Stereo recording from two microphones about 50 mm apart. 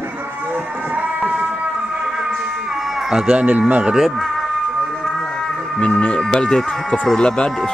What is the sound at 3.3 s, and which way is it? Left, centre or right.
Speech, right.